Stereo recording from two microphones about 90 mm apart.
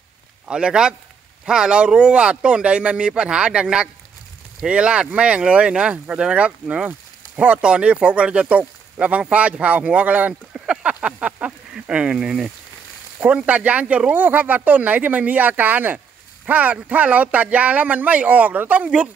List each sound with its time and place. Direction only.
0.5 s speech: 10° right (ahead or behind)